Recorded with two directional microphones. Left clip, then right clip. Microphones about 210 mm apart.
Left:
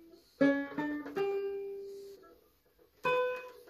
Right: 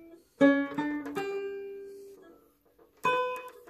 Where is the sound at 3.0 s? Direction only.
45° right (ahead or behind).